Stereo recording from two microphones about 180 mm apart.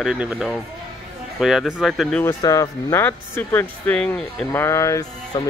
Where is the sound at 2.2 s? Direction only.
20° left (ahead or behind).